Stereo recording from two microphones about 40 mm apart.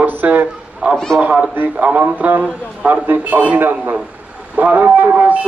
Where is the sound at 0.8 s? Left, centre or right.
Right.